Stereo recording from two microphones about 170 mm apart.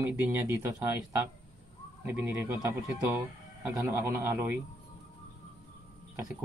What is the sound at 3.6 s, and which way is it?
Speech, 10° right (ahead or behind).